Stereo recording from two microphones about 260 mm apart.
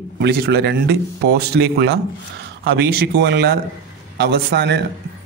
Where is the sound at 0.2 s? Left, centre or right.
Right.